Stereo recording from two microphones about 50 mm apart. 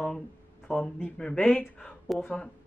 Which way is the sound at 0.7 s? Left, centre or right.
Left.